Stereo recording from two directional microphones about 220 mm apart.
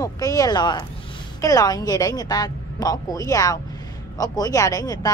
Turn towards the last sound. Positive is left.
turn(degrees=15)  # may be behind; listen again after turning